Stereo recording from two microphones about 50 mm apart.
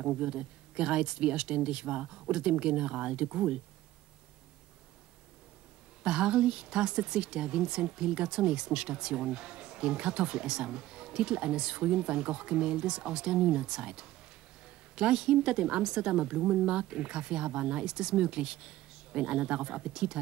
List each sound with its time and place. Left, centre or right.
0.0 s speech: right
0.3 s speech: centre
6.0 s speech: centre